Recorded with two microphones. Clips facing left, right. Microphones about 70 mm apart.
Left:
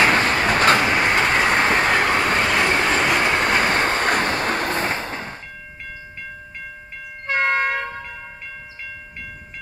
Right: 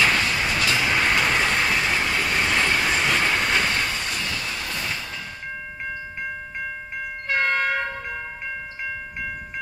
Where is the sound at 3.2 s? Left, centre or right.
Left.